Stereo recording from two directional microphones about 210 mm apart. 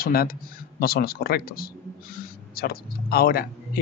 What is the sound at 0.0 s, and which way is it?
Speech, 45° left (ahead or behind).